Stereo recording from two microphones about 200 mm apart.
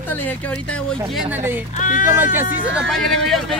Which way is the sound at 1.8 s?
40° left (ahead or behind).